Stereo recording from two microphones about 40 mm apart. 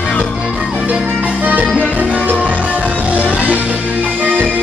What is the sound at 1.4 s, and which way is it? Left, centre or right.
Music, right.